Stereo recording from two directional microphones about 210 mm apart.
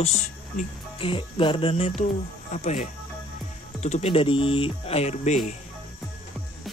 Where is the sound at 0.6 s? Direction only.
25° left (ahead or behind).